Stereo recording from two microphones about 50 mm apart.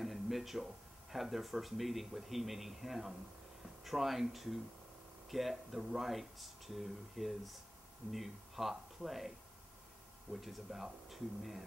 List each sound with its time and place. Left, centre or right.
0.0 s a sound: centre
1.1 s speech: centre
10.4 s speech: centre